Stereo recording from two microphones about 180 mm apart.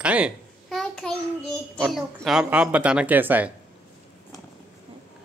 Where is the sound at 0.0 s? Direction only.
5° right (ahead or behind).